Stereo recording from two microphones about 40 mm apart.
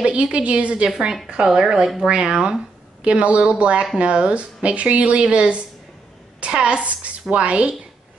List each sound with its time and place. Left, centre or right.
0.0 s speech: right
0.8 s a woman's voice: centre
3.0 s speech: right